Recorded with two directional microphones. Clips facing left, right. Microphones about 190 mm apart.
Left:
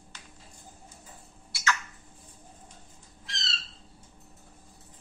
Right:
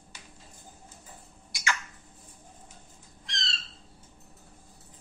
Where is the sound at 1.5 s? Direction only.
15° right (ahead or behind).